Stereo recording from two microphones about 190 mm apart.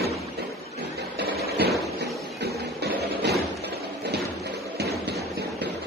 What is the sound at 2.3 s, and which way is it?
Music, 60° right (ahead or behind).